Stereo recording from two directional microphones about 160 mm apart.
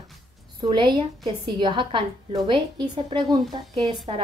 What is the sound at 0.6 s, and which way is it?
A woman's voice, 30° right (ahead or behind).